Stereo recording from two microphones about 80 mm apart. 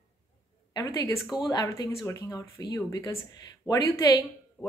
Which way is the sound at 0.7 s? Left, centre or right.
Left.